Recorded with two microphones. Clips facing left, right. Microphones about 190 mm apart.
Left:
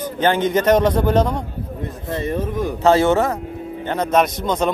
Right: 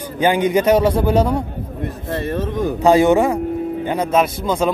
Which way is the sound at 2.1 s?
15° left (ahead or behind).